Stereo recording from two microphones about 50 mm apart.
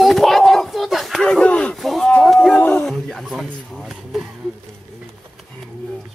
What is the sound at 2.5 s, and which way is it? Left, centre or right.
Speech, left.